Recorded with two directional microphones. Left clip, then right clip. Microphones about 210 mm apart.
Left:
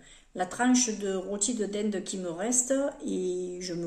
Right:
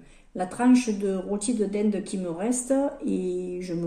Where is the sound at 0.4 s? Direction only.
Centre (ahead or behind).